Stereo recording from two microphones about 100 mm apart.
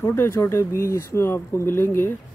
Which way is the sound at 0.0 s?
30° left (ahead or behind).